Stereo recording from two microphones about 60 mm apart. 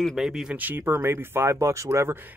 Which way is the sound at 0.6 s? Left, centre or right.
Right.